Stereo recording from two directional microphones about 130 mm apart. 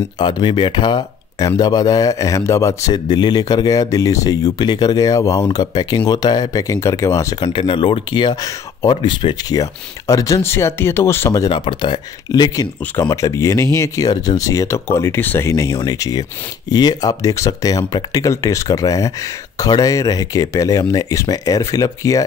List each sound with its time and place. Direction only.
0.2 s speech: 35° left (ahead or behind)
7.4 s speech: 40° left (ahead or behind); by 11.5 s 25° left (ahead or behind)
11.5 s speech: 40° left (ahead or behind)